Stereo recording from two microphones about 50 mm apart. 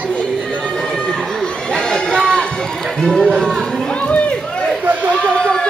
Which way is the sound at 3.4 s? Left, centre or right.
Centre.